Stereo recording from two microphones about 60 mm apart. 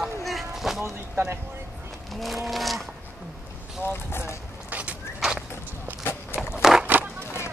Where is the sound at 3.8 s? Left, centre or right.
Left.